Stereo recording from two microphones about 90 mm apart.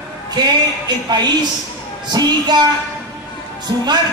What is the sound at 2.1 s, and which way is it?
Speech, 50° right (ahead or behind).